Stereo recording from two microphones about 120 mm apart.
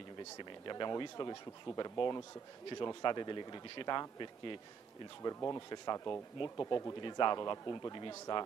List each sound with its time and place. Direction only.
0.4 s a man's voice: 40° left (ahead or behind)
5.2 s a man's voice: 25° left (ahead or behind)
7.0 s a man's voice: 40° left (ahead or behind)